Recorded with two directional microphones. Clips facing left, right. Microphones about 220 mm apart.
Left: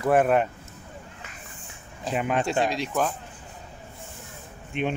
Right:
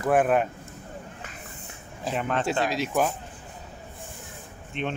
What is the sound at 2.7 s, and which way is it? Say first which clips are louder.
Speech: right 1 dB; 5° right (ahead or behind).